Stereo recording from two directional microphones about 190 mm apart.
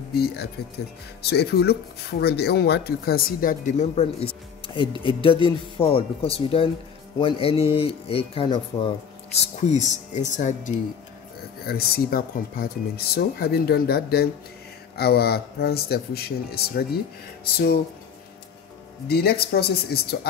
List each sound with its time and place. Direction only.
0.1 s speech: 55° left (ahead or behind); by 8.9 s 25° left (ahead or behind)
9.7 s speech: 40° left (ahead or behind)
11.6 s speech: 55° left (ahead or behind)
19.0 s speech: 55° left (ahead or behind)